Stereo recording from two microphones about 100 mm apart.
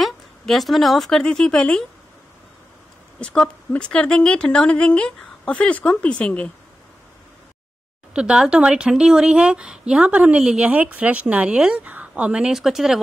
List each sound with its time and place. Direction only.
0.0 s speech: centre (ahead or behind)
3.2 s a woman's voice: 10° left (ahead or behind)
8.1 s speech: 10° right (ahead or behind)